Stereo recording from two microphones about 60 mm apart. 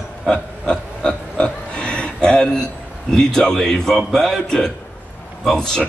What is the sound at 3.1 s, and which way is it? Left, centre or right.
A man's voice, centre.